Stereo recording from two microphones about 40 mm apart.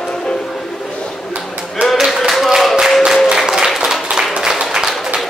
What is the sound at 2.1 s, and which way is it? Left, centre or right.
Clapping, centre.